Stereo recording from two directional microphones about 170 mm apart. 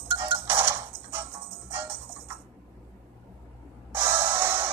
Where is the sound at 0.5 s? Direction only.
15° right (ahead or behind).